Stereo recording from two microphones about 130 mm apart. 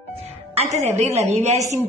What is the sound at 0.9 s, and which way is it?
Speech, 55° right (ahead or behind).